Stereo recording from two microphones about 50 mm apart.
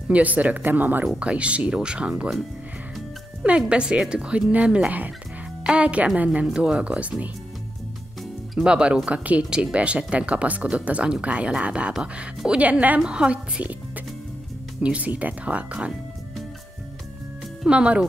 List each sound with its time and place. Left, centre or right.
0.1 s speech: right
1.2 s speech: right
3.4 s a woman's voice: right
6.4 s speech: centre
8.5 s speech: centre
13.0 s speech: centre
17.6 s speech: right